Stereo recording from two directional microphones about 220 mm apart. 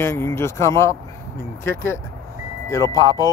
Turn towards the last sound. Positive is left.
turn(degrees=15)  # may be behind; listen again after turning